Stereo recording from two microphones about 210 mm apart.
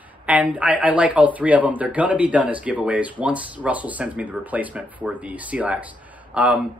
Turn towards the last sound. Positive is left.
turn(degrees=-5)  # may be behind; listen again after turning